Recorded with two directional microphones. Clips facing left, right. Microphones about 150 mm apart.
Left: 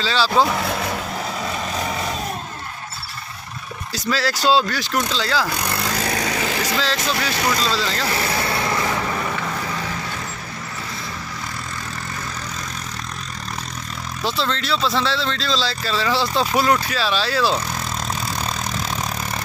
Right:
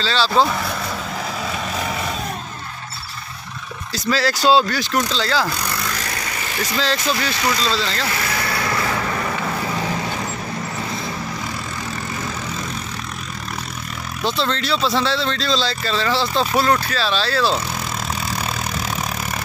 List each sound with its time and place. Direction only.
0.0 s speech: 10° left (ahead or behind)
1.4 s vehicle: centre (ahead or behind)
3.9 s speech: 5° left (ahead or behind)
5.6 s vehicle: 30° left (ahead or behind)
6.2 s vehicle: 80° left
6.8 s speech: centre (ahead or behind)
8.1 s vehicle: 25° left (ahead or behind)
9.3 s vehicle: 15° right (ahead or behind)
14.2 s speech: centre (ahead or behind)
18.4 s vehicle: 10° right (ahead or behind)